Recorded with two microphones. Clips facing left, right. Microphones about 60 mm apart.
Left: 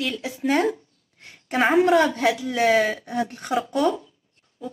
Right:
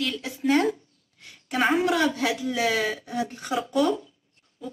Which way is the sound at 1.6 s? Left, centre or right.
Centre.